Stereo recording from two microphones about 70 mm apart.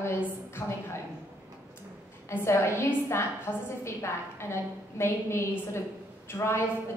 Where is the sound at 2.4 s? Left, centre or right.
Left.